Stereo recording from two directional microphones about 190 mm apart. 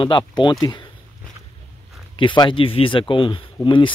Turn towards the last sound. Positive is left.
turn(degrees=25)  # may be behind; listen again after turning